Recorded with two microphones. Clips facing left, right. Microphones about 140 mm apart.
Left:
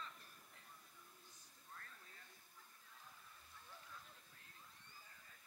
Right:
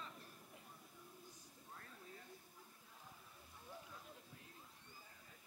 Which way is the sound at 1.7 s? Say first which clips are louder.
Right 4 dB; 15° right (ahead or behind).